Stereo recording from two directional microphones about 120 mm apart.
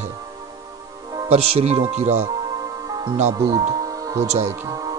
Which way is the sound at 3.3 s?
30° right (ahead or behind).